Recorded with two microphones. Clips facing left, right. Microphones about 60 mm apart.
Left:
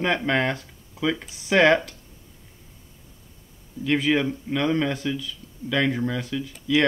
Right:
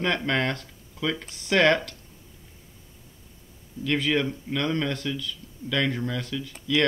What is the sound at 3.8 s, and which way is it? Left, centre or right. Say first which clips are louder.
Speech: left 3 dB; centre.